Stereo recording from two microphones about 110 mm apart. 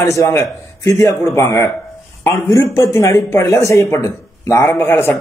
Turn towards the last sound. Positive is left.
turn(degrees=20)  # may be behind; listen again after turning